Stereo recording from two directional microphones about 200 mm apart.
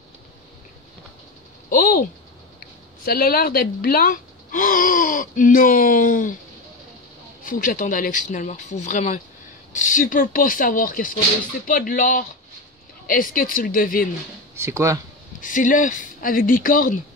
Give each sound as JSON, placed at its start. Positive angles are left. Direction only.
{"t": 1.7, "sound": "a sound", "side_deg": 45}
{"t": 3.1, "sound": "speech", "side_deg": 50}
{"t": 7.4, "sound": "speech", "side_deg": 45}
{"t": 14.5, "sound": "speech", "side_deg": -15}
{"t": 15.4, "sound": "speech", "side_deg": 40}